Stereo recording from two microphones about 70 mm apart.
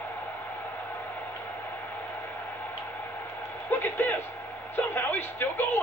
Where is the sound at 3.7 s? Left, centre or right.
Left.